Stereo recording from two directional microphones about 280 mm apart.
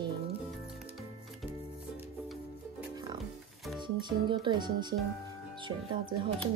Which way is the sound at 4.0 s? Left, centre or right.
Centre.